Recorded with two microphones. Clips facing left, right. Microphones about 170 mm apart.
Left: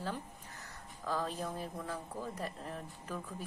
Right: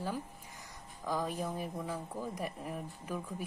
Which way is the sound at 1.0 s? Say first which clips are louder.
Right 2 dB; 15° right (ahead or behind).